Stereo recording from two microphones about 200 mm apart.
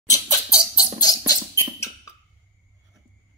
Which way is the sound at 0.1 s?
15° left (ahead or behind).